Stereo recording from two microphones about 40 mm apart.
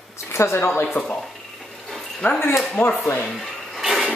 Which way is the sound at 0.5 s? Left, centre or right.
Left.